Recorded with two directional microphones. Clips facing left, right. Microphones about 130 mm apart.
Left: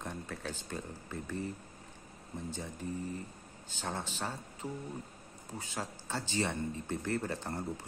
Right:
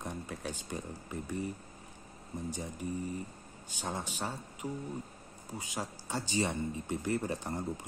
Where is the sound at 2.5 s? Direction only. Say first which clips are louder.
Right 2 dB; 15° right (ahead or behind).